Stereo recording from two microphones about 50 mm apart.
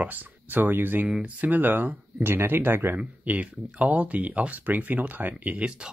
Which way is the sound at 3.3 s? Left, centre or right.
Right.